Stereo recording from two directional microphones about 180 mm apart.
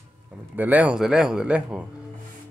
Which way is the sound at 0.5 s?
10° right (ahead or behind).